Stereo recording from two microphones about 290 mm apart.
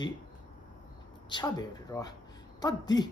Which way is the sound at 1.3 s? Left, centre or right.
Centre.